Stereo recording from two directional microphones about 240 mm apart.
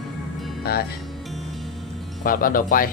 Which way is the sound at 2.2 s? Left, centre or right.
Left.